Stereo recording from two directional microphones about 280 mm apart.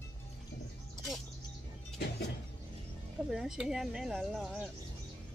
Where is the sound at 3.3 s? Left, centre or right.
Centre.